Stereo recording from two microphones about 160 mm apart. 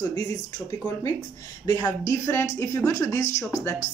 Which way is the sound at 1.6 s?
25° left (ahead or behind).